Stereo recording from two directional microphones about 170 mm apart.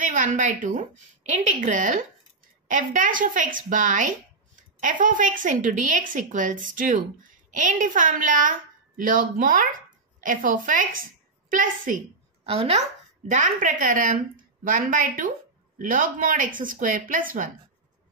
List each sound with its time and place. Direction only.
0.0 s a woman's voice: 50° right (ahead or behind)
12.4 s speech: 35° right (ahead or behind)
13.3 s a woman's voice: 50° right (ahead or behind)